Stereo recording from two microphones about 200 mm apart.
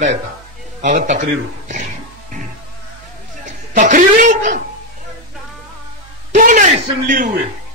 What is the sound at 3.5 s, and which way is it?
A man's voice, 40° right (ahead or behind).